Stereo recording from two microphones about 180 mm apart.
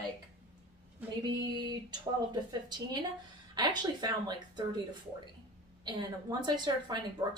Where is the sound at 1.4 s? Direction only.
20° right (ahead or behind).